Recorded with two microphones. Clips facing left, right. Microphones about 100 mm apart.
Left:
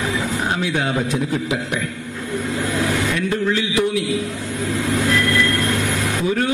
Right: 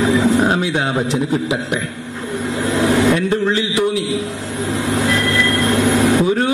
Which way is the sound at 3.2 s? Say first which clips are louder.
Right 3 dB; 30° right (ahead or behind).